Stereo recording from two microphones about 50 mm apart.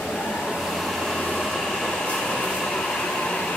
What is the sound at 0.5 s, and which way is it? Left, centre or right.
Train, centre.